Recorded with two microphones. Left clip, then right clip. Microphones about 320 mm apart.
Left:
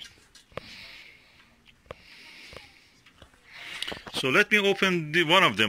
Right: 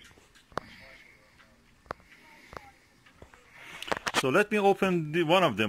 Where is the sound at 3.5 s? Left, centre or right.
Centre.